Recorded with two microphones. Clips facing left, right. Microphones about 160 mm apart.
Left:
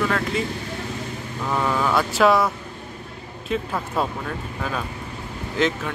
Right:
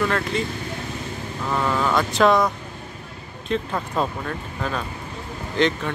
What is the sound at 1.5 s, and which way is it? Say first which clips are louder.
Speech: even; 5° left (ahead or behind).